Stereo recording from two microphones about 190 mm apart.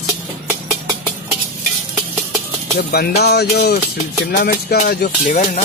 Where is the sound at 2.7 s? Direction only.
55° left (ahead or behind).